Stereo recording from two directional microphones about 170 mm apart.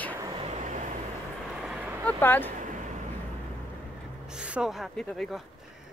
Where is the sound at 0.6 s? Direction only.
50° right (ahead or behind).